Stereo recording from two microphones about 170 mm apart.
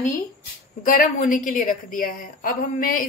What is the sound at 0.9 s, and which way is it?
A woman's voice, 50° left (ahead or behind).